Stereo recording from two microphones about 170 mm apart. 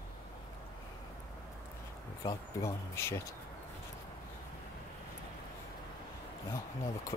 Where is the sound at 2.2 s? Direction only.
15° left (ahead or behind).